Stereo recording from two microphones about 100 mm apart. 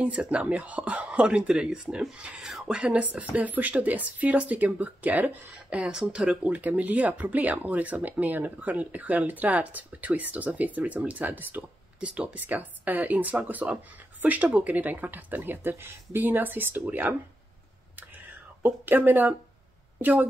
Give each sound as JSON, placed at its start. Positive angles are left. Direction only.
{"t": 0.0, "sound": "speech", "side_deg": -10}
{"t": 18.6, "sound": "speech", "side_deg": -20}